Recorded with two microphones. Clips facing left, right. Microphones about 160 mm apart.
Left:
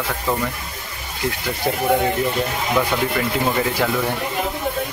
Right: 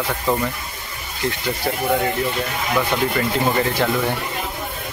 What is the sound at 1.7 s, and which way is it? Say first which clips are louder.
Speech: left 2 dB; 15° left (ahead or behind).